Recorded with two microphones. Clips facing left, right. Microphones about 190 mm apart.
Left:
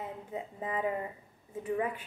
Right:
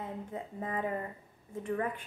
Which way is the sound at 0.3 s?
10° left (ahead or behind).